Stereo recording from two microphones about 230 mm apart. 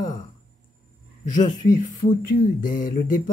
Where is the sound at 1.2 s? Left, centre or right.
Left.